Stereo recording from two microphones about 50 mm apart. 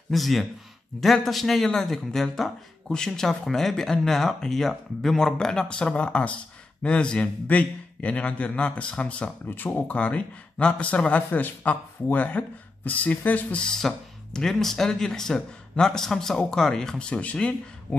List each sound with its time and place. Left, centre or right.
0.1 s a man's voice: centre; by 13.6 s left
13.6 s speech: centre; by 17.6 s left